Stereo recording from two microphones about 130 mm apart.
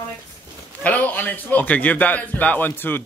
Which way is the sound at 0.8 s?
10° left (ahead or behind).